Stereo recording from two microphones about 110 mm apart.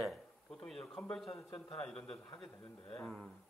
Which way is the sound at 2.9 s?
Centre (ahead or behind).